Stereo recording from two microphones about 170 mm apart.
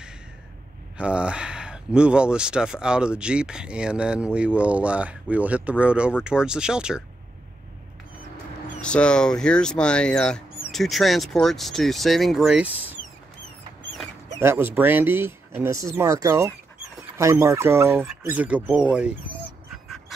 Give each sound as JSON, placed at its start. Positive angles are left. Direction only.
{"t": 0.9, "sound": "speech", "side_deg": -5}
{"t": 8.8, "sound": "speech", "side_deg": 5}
{"t": 14.4, "sound": "speech", "side_deg": -15}